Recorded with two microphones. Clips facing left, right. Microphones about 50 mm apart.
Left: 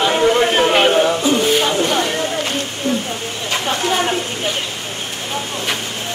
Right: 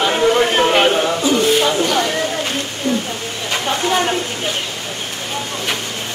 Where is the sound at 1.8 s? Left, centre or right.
Centre.